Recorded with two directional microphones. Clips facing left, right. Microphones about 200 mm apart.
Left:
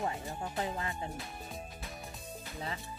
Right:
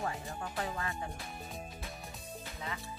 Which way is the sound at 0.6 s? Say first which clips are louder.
Left 1 dB; 20° left (ahead or behind).